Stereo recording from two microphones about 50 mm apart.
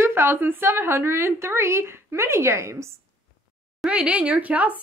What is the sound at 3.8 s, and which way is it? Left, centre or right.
Speech, centre.